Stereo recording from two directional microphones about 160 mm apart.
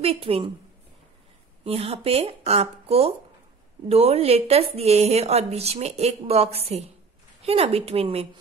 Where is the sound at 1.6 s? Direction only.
40° right (ahead or behind).